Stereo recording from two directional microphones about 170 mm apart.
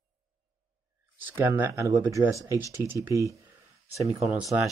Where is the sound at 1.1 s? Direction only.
10° right (ahead or behind).